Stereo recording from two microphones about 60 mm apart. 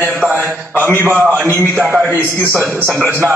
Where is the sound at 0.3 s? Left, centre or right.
Right.